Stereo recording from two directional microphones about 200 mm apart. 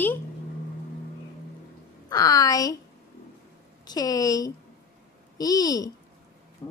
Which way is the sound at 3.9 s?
20° left (ahead or behind).